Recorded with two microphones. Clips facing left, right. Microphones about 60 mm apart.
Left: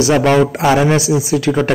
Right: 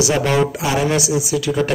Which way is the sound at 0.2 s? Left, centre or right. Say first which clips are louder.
Left 6 dB; left.